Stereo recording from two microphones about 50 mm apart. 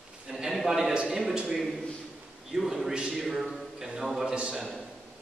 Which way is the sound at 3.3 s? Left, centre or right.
Centre.